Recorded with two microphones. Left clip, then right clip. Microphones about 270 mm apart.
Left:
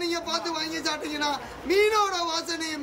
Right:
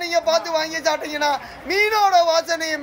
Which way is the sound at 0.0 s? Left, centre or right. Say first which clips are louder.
Right 9 dB; centre.